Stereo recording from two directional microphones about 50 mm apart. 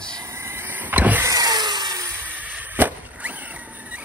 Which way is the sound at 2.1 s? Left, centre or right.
Right.